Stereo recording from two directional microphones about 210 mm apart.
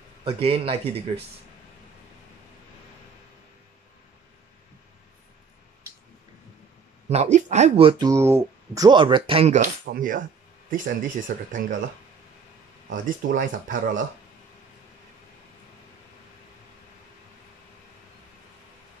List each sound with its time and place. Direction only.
0.2 s speech: 25° right (ahead or behind)
7.1 s speech: 30° right (ahead or behind)
8.1 s speech: 10° right (ahead or behind); by 11.6 s 40° right (ahead or behind)
12.9 s speech: 40° right (ahead or behind)